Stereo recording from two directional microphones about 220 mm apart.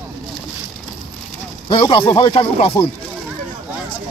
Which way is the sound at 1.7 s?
25° left (ahead or behind).